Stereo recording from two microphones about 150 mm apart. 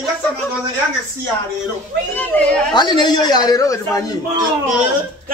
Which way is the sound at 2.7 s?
30° left (ahead or behind).